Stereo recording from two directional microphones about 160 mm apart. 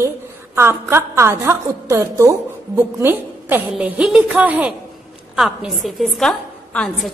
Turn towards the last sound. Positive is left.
turn(degrees=5)  # may be behind; listen again after turning